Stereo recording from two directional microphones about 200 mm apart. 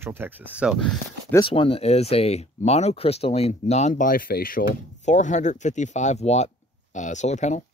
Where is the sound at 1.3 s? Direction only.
25° left (ahead or behind).